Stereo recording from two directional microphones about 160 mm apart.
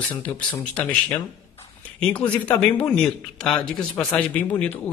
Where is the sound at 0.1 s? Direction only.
10° left (ahead or behind).